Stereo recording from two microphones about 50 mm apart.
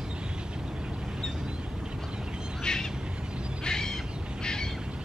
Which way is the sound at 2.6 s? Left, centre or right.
Centre.